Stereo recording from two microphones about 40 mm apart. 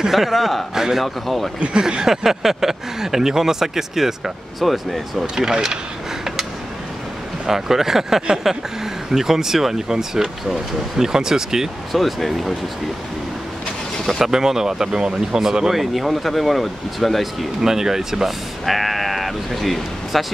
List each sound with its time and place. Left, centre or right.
0.0 s speech: centre
1.0 s speech: centre
1.8 s speech: centre
5.2 s speech: centre
7.4 s speech: centre
11.9 s speech: centre
14.0 s speech: centre
15.7 s speech: centre
17.6 s speech: centre
18.7 s speech: centre